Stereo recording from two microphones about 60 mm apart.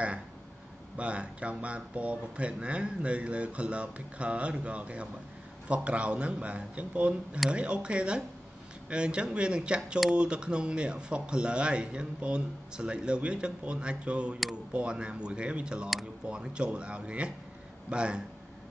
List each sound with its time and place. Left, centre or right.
0.9 s speech: right